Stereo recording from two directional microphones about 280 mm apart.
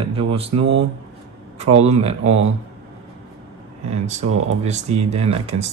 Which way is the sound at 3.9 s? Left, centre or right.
Right.